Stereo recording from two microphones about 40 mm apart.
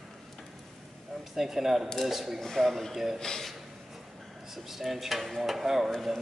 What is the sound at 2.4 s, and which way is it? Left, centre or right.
Speech, centre.